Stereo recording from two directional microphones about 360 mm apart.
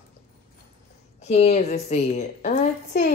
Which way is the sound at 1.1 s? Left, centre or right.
Centre.